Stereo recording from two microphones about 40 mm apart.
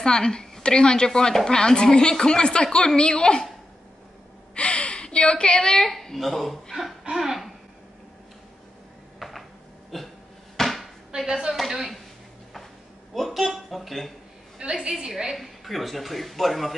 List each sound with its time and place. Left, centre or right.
0.0 s speech: centre
4.6 s gasp: left; by 5.9 s centre
5.9 s speech: centre
7.2 s a sound: centre
9.2 s a sound: centre
10.6 s chopping: centre
11.2 s a woman's voice: centre
11.5 s speech: centre
13.1 s speech: centre
14.6 s a woman's voice: centre
15.3 s speech: centre